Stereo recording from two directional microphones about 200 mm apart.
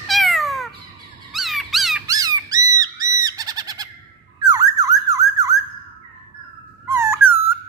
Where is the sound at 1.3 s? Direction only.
Centre (ahead or behind).